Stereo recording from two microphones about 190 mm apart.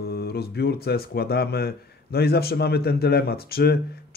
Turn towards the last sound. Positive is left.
turn(degrees=55)  # may be behind; listen again after turning